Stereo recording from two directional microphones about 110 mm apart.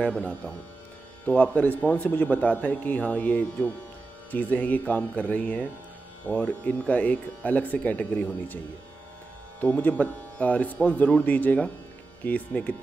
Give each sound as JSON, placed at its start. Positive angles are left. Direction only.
{"t": 0.0, "sound": "a man's voice", "side_deg": 15}
{"t": 9.6, "sound": "a man's voice", "side_deg": 15}